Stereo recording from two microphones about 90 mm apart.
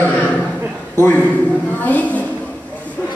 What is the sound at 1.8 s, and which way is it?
Speech, 15° left (ahead or behind).